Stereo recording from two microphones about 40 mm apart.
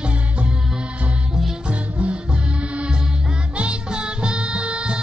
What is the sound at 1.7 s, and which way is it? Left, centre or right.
Music, right.